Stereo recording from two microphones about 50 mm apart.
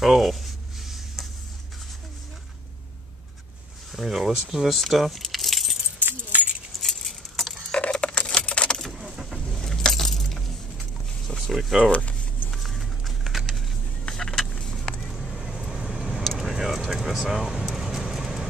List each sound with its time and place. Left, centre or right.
0.0 s a sound: centre
3.9 s speech: centre
5.9 s keys jangling: right
6.8 s keys jangling: centre
7.7 s coin: left
8.3 s typing: left
8.9 s vehicle: centre
9.6 s keys jangling: centre
11.2 s a sound: centre
11.9 s speech: left
12.4 s a sound: centre
14.0 s vehicle: centre